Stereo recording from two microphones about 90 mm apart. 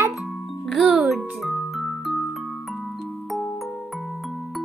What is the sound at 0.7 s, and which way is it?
Music, centre (ahead or behind).